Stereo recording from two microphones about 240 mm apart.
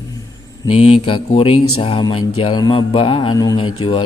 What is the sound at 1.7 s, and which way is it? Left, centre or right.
A man's voice, left.